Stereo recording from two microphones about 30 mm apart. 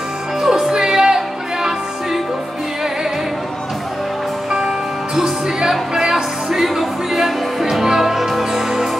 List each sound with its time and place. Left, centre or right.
0.4 s music: centre
4.5 s music: right
6.6 s music: centre